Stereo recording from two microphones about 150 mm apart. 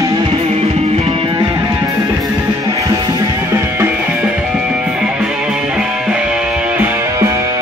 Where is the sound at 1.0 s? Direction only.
40° right (ahead or behind).